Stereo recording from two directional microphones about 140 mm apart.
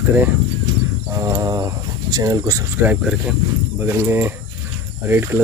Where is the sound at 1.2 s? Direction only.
25° right (ahead or behind).